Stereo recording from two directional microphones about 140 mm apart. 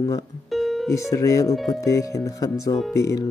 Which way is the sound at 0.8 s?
20° left (ahead or behind).